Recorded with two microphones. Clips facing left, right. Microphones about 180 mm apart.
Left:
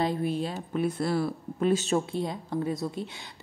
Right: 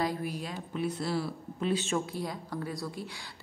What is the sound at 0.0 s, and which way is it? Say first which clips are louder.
Speech: left 5 dB; 25° left (ahead or behind).